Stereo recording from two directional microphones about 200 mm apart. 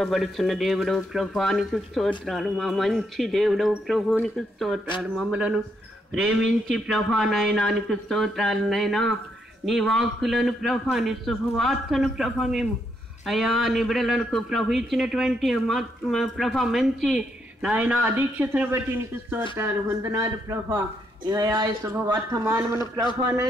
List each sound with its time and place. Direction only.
0.0 s a man's voice: centre (ahead or behind)